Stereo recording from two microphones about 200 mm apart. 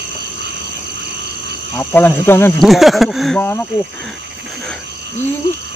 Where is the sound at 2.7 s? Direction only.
Centre (ahead or behind).